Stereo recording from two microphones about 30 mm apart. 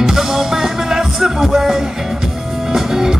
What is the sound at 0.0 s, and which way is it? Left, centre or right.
Music, centre.